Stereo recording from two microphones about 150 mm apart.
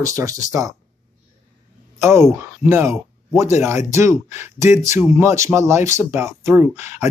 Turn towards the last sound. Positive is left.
turn(degrees=-15)  # may be behind; listen again after turning